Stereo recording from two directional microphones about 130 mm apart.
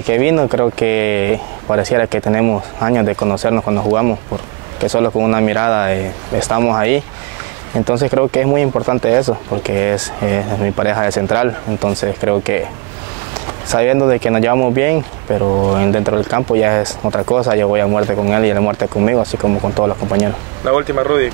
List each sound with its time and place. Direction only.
0.1 s speech: 20° right (ahead or behind)
0.8 s speech: 20° right (ahead or behind)
13.7 s speech: 25° right (ahead or behind)
15.4 s speech: 35° right (ahead or behind)